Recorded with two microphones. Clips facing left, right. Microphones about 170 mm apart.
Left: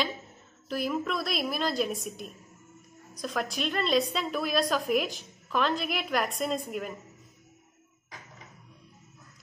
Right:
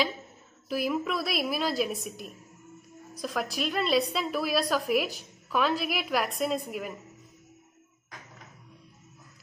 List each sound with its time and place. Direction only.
0.7 s a woman's voice: 5° right (ahead or behind)